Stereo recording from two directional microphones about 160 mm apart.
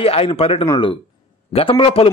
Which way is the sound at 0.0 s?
35° left (ahead or behind).